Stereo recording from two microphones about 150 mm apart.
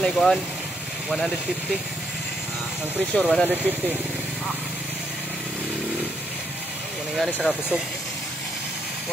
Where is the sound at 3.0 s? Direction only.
Centre (ahead or behind).